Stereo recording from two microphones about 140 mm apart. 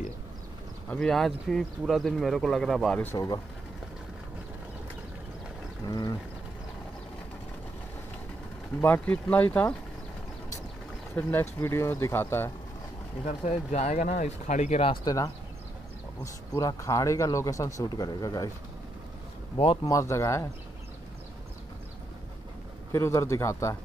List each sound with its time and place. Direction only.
0.8 s speech: 5° left (ahead or behind)
5.9 s speech: 30° left (ahead or behind)
8.8 s speech: 10° left (ahead or behind)
11.1 s speech: 15° left (ahead or behind)
13.2 s speech: 55° left (ahead or behind)
15.0 s speech: 25° left (ahead or behind)
16.5 s speech: 20° left (ahead or behind)
19.5 s speech: 40° left (ahead or behind)
19.9 s speech: 20° left (ahead or behind)
22.9 s speech: 20° left (ahead or behind)